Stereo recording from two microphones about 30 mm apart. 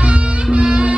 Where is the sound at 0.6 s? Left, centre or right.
Right.